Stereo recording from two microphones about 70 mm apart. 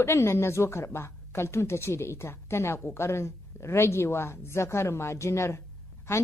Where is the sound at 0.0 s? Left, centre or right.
Left.